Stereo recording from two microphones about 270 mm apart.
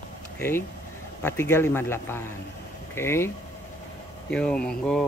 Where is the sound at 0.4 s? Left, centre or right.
Centre.